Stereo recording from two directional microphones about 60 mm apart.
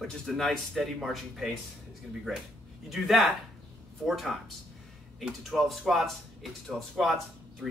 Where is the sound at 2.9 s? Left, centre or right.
Centre.